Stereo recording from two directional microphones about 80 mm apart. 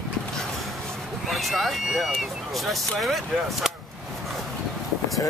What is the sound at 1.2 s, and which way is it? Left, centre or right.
Speech, centre.